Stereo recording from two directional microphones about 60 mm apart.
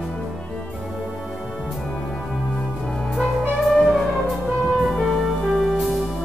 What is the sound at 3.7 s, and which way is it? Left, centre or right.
Music, centre.